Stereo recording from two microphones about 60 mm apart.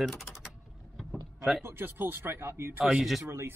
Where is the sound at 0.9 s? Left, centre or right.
Centre.